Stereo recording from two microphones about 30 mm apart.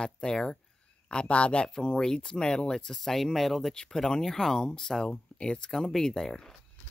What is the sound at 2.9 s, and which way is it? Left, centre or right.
Speech, centre.